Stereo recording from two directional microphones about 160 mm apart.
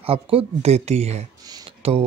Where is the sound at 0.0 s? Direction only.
35° right (ahead or behind).